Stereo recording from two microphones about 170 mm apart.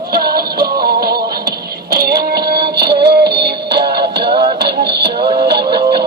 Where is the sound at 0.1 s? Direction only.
65° right (ahead or behind).